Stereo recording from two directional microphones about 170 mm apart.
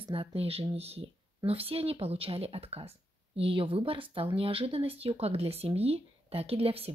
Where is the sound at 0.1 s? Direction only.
35° right (ahead or behind).